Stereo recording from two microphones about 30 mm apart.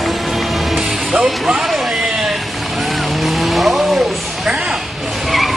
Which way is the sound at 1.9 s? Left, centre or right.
Centre.